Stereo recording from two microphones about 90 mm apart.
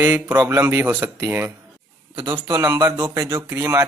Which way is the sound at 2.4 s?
35° right (ahead or behind).